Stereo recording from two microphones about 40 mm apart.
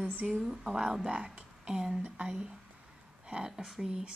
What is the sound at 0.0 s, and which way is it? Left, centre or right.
Speech, right.